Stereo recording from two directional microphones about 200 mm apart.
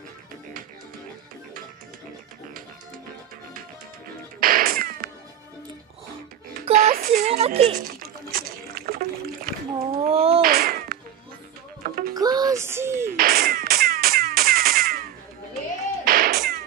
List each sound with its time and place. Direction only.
4.4 s music: 45° right (ahead or behind)
6.7 s a sound: 45° right (ahead or behind)
7.2 s a sound: 30° right (ahead or behind); by 9.5 s 45° right (ahead or behind)
10.0 s a sound: 30° right (ahead or behind)
10.4 s cat: 50° right (ahead or behind)
11.8 s music: 45° right (ahead or behind)
12.1 s music: 20° right (ahead or behind)
13.1 s music: 50° right (ahead or behind)
16.1 s cat: 50° right (ahead or behind)